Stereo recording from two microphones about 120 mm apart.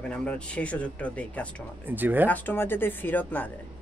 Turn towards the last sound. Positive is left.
turn(degrees=15)  # may be behind; listen again after turning